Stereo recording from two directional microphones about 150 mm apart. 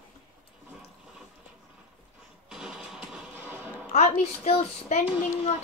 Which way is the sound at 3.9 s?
45° left (ahead or behind).